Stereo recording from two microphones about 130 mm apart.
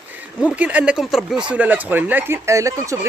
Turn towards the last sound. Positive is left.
turn(degrees=-25)  # may be behind; listen again after turning